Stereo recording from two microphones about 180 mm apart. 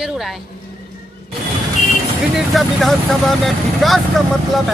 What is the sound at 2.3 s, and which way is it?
Speech, centre (ahead or behind).